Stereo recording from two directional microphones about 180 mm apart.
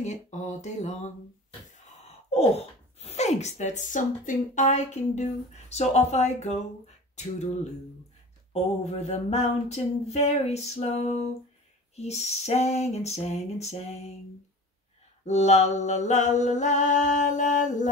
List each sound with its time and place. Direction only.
0.0 s a woman's voice: 40° left (ahead or behind)
1.9 s gasp: 35° left (ahead or behind)
3.0 s a woman's voice: 35° left (ahead or behind)
8.8 s a woman's voice: 35° left (ahead or behind)
15.2 s a woman's voice: 40° left (ahead or behind)